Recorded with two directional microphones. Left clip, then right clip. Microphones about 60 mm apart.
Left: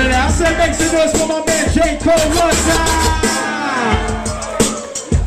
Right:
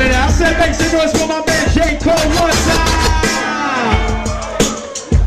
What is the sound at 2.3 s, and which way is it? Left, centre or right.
Music, left.